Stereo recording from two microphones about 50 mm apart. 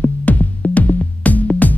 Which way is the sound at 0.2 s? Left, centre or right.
Left.